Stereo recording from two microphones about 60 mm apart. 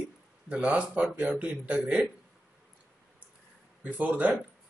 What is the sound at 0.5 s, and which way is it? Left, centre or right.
Speech, right.